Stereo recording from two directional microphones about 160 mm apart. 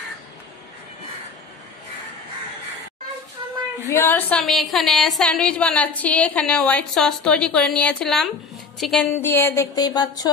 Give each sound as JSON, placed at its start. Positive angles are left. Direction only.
{"t": 3.9, "sound": "a woman's voice", "side_deg": 10}
{"t": 9.2, "sound": "speech", "side_deg": 15}